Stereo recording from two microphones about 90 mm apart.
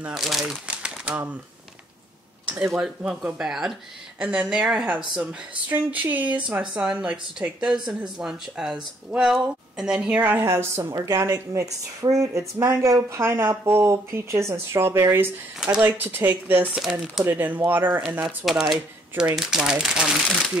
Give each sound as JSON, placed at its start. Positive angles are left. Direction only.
{"t": 0.1, "sound": "speech", "side_deg": 0}
{"t": 2.6, "sound": "speech", "side_deg": -10}
{"t": 10.3, "sound": "speech", "side_deg": -25}
{"t": 15.6, "sound": "speech", "side_deg": -5}
{"t": 16.0, "sound": "speech", "side_deg": -20}
{"t": 18.2, "sound": "speech", "side_deg": -5}